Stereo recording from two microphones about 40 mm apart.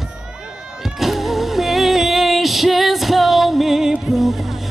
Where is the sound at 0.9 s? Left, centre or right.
Centre.